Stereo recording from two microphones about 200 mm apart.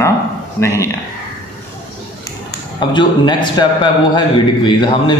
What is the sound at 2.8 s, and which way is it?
A man's voice, 25° left (ahead or behind).